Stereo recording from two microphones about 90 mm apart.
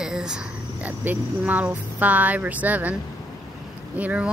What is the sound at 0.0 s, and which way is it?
Speech, 5° right (ahead or behind).